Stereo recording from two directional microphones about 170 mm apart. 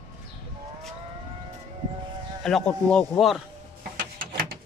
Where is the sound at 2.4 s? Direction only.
5° left (ahead or behind).